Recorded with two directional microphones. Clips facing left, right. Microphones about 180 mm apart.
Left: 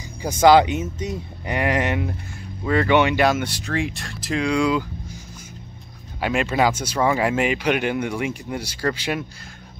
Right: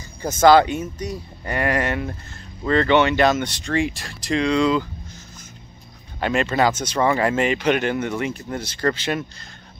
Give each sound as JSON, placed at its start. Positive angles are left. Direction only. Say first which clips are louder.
{"t": 0.2, "sound": "speech", "louder": "even", "side_deg": 15}
{"t": 6.2, "sound": "speech", "louder": "right 1 dB", "side_deg": 10}